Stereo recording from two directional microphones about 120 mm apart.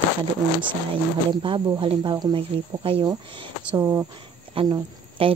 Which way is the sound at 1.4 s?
45° right (ahead or behind).